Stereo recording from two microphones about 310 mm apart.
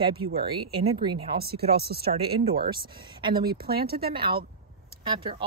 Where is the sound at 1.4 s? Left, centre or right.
Right.